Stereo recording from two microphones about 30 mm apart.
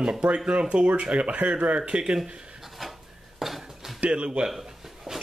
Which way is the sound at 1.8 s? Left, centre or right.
Right.